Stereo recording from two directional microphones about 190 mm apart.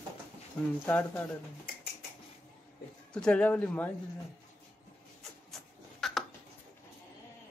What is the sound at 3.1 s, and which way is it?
Speech, 5° left (ahead or behind).